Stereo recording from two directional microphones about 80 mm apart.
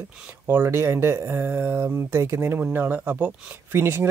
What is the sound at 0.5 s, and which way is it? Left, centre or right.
Speech, right.